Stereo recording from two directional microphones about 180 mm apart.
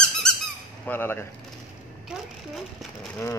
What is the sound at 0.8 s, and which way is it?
Speech, 10° left (ahead or behind).